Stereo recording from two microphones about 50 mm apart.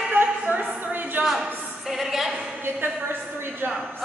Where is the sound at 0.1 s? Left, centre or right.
Right.